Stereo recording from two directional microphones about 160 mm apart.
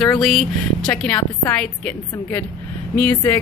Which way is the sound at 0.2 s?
Centre (ahead or behind).